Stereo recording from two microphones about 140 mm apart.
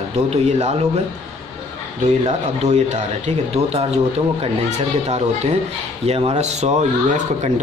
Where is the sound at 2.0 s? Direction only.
50° right (ahead or behind).